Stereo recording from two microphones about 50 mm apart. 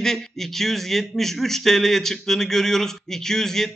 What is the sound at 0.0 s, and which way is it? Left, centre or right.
Speech, centre.